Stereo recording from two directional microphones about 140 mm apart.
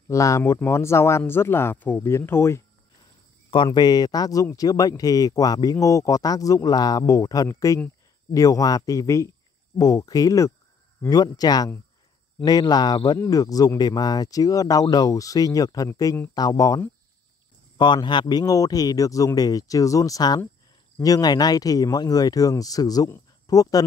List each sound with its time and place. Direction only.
0.1 s speech: 20° left (ahead or behind)
3.4 s speech: 35° left (ahead or behind)